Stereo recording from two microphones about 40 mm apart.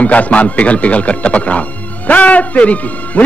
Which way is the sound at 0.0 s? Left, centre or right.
Left.